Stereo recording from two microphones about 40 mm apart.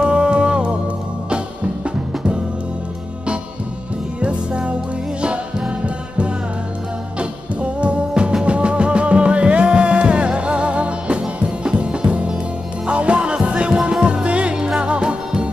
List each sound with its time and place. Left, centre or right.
0.0 s music: right
4.2 s music: right
7.2 s music: right